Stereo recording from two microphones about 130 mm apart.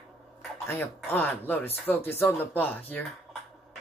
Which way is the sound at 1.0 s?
15° left (ahead or behind).